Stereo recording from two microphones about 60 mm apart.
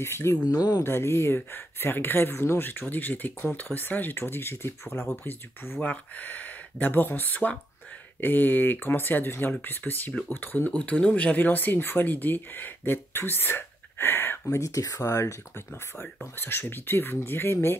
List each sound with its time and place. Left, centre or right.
0.0 s speech: left
0.5 s speech: left
0.8 s speech: left
5.8 s speech: left
10.8 s speech: centre; by 14.6 s left
14.6 s speech: left
16.3 s speech: left